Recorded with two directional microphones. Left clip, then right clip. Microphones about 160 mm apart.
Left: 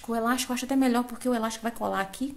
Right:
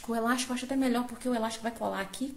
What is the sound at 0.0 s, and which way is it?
A woman's voice, 15° left (ahead or behind).